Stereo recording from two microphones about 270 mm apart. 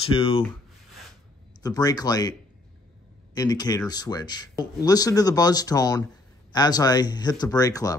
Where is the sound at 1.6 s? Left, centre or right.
Centre.